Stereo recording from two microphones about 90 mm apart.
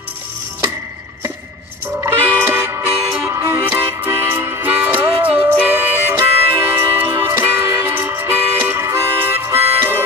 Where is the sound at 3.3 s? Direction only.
35° right (ahead or behind).